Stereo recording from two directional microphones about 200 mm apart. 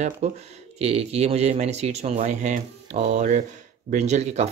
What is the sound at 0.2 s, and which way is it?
Speech, 30° right (ahead or behind).